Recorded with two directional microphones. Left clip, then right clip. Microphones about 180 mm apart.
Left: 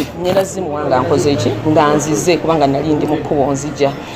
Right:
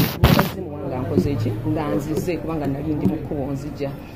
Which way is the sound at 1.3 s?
30° left (ahead or behind).